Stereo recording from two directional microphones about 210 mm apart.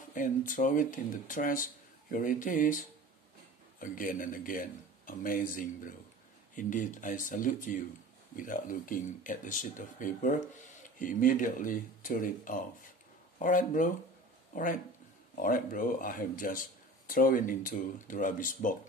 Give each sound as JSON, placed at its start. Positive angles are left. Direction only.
{"t": 0.1, "sound": "speech", "side_deg": 40}